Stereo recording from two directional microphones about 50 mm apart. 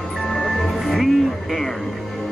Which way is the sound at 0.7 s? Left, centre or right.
Centre.